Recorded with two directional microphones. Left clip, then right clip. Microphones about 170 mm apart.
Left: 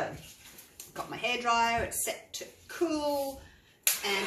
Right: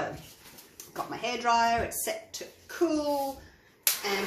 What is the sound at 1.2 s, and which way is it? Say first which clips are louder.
Speech: right 2 dB; 40° right (ahead or behind).